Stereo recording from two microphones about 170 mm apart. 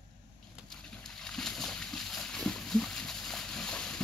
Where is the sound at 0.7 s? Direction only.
5° left (ahead or behind).